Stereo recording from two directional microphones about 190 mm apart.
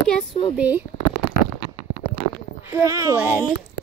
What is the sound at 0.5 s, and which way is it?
Speech, 10° right (ahead or behind).